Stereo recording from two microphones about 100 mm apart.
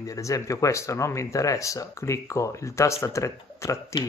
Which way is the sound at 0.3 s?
30° left (ahead or behind).